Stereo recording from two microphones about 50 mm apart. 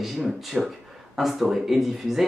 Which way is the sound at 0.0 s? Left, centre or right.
Centre.